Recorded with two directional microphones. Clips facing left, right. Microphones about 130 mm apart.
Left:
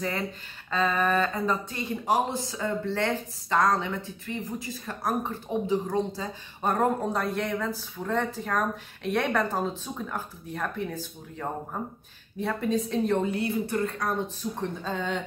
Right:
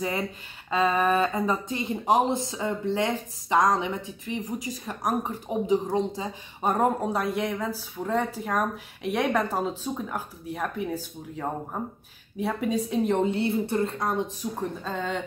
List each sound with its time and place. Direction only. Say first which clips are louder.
0.7 s speech: right 2 dB; 15° right (ahead or behind)
14.6 s speech: even; centre (ahead or behind)